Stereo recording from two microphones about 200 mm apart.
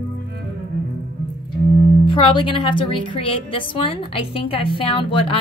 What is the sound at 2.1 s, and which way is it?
A woman's voice, 25° left (ahead or behind).